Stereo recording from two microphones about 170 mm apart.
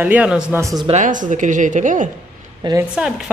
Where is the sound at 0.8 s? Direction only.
45° right (ahead or behind).